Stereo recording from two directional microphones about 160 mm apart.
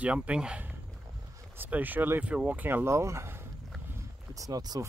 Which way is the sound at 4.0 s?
20° right (ahead or behind).